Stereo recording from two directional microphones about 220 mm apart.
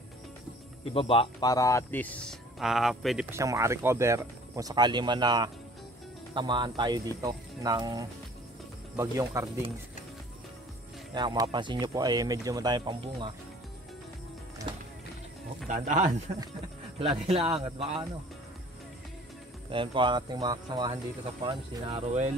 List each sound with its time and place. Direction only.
0.8 s a man's voice: 25° left (ahead or behind); by 3.3 s centre (ahead or behind)
3.3 s speech: 15° right (ahead or behind)
11.1 s speech: 20° right (ahead or behind)
15.7 s speech: 35° right (ahead or behind)
19.7 s speech: 20° right (ahead or behind)